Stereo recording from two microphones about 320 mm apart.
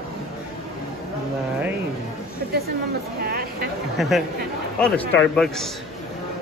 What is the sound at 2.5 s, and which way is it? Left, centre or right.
Speech, right.